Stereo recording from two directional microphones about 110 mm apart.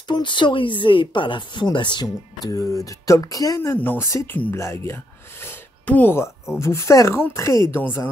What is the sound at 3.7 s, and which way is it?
Speech, 20° left (ahead or behind).